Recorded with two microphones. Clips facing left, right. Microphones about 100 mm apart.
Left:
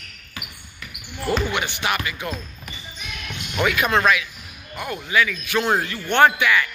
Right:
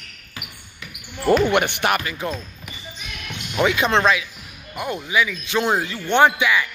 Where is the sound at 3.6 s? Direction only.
25° right (ahead or behind).